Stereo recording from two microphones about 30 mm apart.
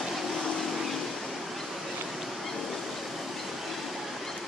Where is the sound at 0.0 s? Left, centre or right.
Centre.